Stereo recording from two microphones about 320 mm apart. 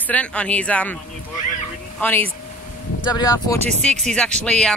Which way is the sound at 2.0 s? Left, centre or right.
Centre.